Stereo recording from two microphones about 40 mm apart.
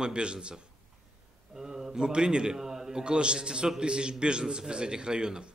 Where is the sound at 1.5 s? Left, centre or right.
Centre.